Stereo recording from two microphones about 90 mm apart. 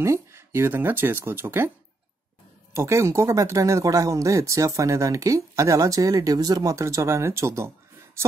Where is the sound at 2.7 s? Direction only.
30° right (ahead or behind).